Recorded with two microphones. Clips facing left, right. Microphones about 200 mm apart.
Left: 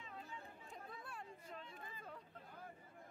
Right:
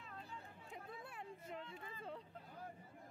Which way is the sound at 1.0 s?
20° right (ahead or behind).